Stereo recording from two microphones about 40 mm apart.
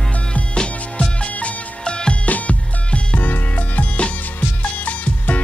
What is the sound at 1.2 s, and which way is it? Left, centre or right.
Music, left.